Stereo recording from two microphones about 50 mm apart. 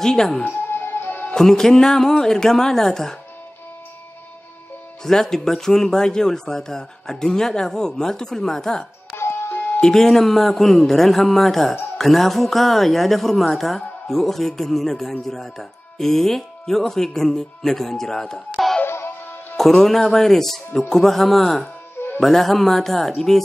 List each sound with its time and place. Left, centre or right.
0.0 s speech: centre
0.4 s music: left
1.3 s speech: centre
5.0 s speech: centre
9.1 s music: left
9.8 s speech: centre
18.9 s music: left
19.5 s speech: centre
21.9 s music: left
22.2 s speech: centre